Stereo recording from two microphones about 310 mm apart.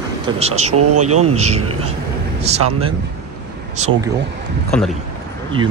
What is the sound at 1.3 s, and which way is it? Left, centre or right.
Speech, right.